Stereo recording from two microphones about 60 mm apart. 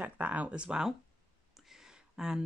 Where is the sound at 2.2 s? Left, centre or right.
Centre.